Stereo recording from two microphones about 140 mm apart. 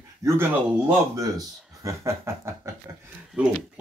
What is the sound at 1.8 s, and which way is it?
Speech, 20° right (ahead or behind).